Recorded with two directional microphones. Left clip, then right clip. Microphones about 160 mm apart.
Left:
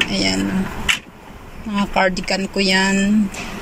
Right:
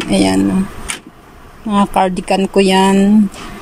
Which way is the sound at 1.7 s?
25° right (ahead or behind).